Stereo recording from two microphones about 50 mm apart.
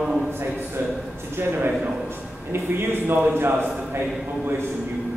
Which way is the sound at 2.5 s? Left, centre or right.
Right.